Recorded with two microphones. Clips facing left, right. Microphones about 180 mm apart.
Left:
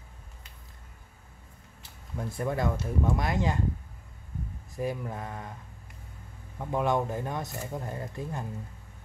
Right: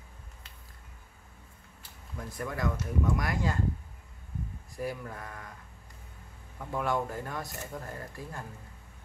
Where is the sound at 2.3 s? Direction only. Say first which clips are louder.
Left 4 dB; 25° left (ahead or behind).